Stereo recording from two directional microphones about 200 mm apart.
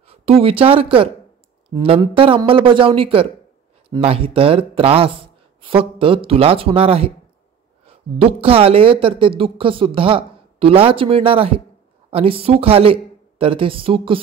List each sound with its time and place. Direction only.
0.0 s speech: 30° right (ahead or behind)